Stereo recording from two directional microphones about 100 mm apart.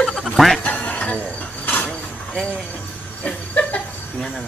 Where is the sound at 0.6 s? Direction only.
15° left (ahead or behind).